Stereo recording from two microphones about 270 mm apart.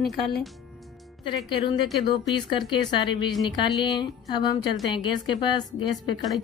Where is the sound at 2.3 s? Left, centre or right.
Centre.